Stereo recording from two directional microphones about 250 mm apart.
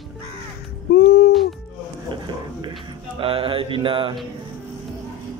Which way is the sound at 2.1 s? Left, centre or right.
Centre.